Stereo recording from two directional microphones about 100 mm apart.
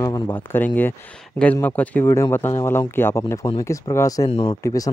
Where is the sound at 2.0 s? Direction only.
25° left (ahead or behind).